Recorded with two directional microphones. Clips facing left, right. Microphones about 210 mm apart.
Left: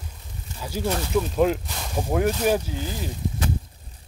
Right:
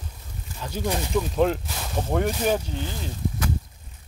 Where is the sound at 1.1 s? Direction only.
5° left (ahead or behind).